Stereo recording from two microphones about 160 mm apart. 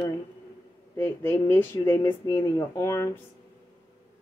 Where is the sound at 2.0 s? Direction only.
30° left (ahead or behind).